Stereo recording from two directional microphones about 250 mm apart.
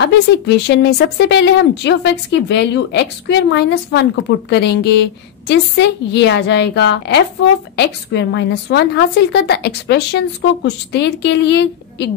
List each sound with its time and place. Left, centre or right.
0.7 s a woman's voice: left